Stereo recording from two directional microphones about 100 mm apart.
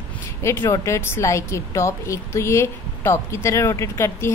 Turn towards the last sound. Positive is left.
turn(degrees=25)  # may be behind; listen again after turning